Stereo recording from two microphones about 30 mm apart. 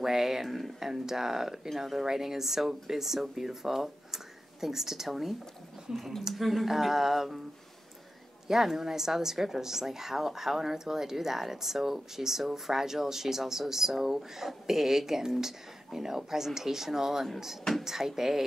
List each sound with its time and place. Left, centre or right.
0.0 s speech: centre
0.4 s speech: centre
0.7 s a woman's voice: centre
5.9 s speech: right
6.3 s a woman's voice: centre
8.5 s a woman's voice: centre